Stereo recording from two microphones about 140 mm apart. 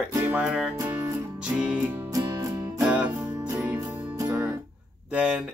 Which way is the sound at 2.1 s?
25° right (ahead or behind).